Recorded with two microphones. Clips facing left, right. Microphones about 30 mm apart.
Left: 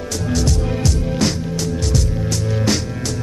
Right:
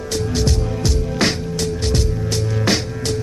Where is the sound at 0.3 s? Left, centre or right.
Right.